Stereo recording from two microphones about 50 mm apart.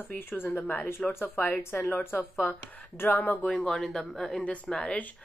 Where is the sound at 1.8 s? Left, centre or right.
Left.